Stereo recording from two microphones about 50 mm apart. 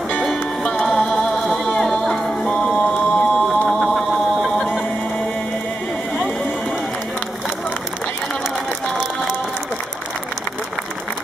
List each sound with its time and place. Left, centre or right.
0.2 s music: centre
3.4 s music: centre